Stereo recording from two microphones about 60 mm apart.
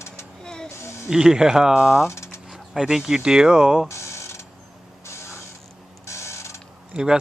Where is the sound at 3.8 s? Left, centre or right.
Left.